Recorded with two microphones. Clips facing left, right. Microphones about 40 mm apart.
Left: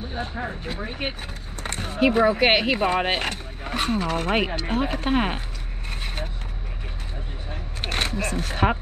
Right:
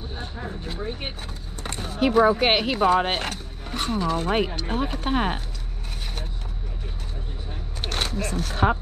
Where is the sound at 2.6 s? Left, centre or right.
Left.